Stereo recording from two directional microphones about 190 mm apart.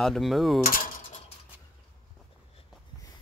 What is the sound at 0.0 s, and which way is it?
Mechanisms, centre (ahead or behind).